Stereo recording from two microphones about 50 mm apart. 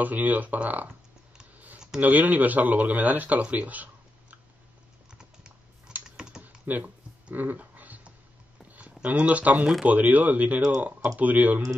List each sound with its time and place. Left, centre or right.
0.0 s speech: right
2.0 s speech: right
6.0 s typing: centre
6.6 s speech: right
7.2 s dog: right
8.6 s a sound: right
9.0 s speech: right